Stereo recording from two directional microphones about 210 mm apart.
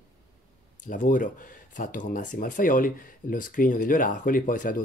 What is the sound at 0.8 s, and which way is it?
Speech, 40° left (ahead or behind).